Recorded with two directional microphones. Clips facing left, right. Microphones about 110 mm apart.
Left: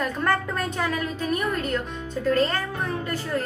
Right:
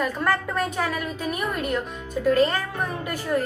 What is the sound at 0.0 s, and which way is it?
A woman's voice, 5° right (ahead or behind).